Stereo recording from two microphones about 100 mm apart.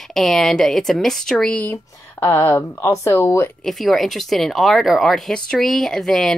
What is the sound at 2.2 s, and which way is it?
Speech, 25° left (ahead or behind).